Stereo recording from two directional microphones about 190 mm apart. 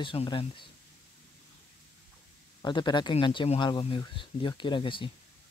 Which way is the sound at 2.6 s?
25° left (ahead or behind).